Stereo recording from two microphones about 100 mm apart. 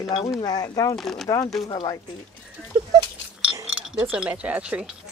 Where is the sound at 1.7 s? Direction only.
45° left (ahead or behind).